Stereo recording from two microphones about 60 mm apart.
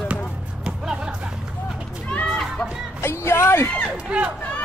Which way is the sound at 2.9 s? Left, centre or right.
Left.